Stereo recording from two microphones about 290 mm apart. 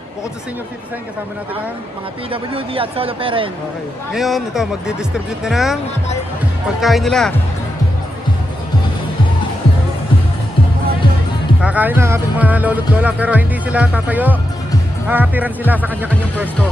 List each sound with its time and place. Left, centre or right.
2.5 s speech: centre
4.1 s speech: centre
6.8 s speech: centre
11.6 s speech: centre